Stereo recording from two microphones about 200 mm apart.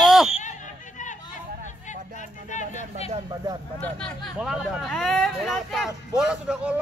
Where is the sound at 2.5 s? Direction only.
35° left (ahead or behind).